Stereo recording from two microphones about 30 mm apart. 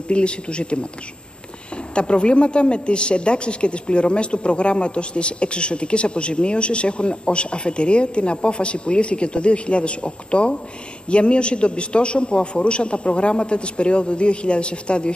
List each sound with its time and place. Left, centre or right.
0.1 s a woman's voice: left
2.0 s a woman's voice: left